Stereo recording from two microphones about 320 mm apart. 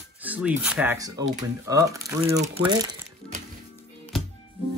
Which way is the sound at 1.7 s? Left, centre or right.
Centre.